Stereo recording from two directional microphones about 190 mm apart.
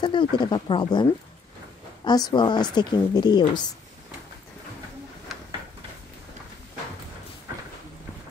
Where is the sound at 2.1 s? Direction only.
20° left (ahead or behind).